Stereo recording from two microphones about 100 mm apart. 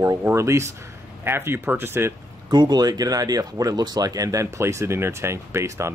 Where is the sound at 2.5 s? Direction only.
45° right (ahead or behind).